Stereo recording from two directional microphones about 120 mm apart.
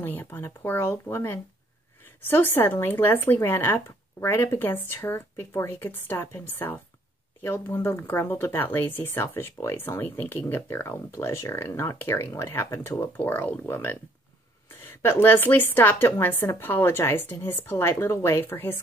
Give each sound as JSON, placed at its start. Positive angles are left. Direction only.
{"t": 0.0, "sound": "speech", "side_deg": 15}